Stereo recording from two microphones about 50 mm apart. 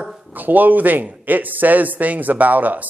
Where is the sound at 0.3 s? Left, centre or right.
Right.